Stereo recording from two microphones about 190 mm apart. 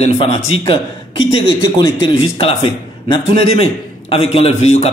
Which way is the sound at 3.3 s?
30° left (ahead or behind).